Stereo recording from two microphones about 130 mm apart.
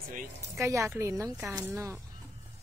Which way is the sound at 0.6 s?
20° right (ahead or behind).